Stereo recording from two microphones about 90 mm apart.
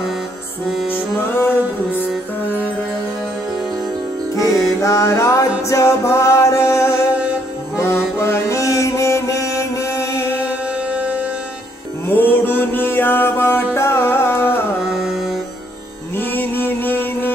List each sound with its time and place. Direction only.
0.8 s music: 25° left (ahead or behind)
4.4 s music: 35° left (ahead or behind)
10.4 s music: 15° right (ahead or behind)
12.1 s music: 20° left (ahead or behind)
14.9 s mantra: 5° right (ahead or behind)
16.2 s music: 20° left (ahead or behind)